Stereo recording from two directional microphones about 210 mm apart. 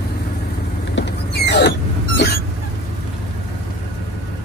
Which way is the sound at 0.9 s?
55° left (ahead or behind).